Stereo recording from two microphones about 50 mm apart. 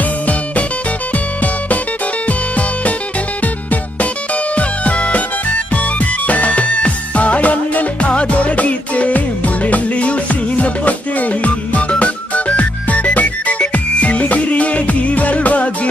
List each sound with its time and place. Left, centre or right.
2.2 s music: left
4.6 s music: left